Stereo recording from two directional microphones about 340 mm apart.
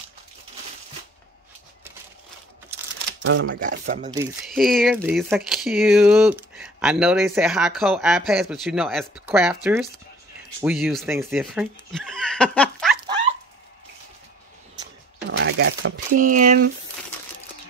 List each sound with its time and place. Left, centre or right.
3.3 s speech: right
4.2 s speech: centre
15.2 s a sound: right